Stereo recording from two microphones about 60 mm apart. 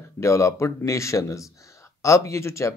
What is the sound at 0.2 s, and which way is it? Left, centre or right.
Speech, left.